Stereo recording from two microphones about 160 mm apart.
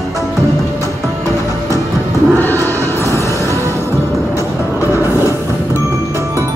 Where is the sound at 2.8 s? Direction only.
15° left (ahead or behind).